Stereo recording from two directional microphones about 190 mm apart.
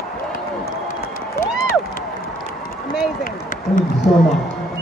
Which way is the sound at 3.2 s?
45° left (ahead or behind).